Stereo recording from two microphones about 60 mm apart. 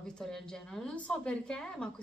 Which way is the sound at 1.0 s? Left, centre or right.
Left.